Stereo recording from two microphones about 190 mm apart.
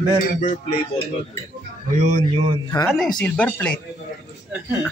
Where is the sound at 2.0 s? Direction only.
35° right (ahead or behind).